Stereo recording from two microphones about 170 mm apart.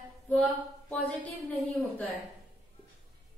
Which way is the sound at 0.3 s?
10° left (ahead or behind).